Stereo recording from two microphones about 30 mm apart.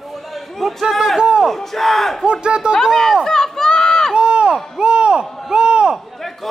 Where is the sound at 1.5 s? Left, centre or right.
Centre.